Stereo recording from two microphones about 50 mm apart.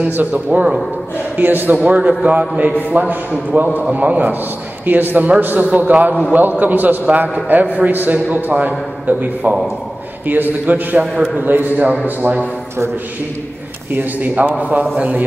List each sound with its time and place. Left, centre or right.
0.0 s a man's voice: right
1.9 s a man's voice: right
13.9 s a man's voice: right